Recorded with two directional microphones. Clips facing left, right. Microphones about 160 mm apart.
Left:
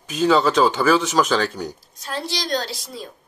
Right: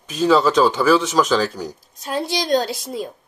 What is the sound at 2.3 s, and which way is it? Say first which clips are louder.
Speech: right 6 dB; 50° right (ahead or behind).